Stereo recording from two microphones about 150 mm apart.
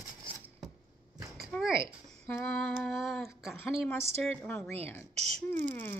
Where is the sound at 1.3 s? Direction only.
Centre (ahead or behind).